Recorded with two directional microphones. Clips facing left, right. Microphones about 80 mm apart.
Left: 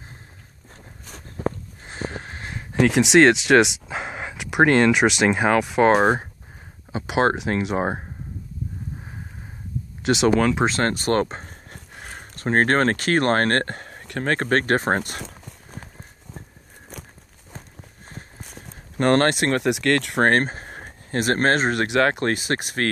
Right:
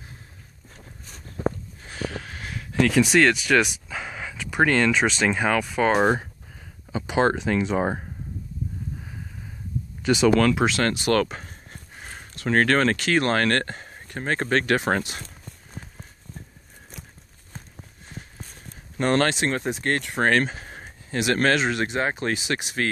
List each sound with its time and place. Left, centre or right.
1.8 s a sound: left
3.6 s dog: left
4.6 s speech: left
4.9 s speech: centre
5.5 s speech: left
6.9 s a sound: left
7.7 s speech: left
10.2 s speech: left
10.7 s speech: left
11.7 s a sound: left
12.4 s speech: left
18.5 s speech: left
20.2 s speech: left
21.8 s speech: left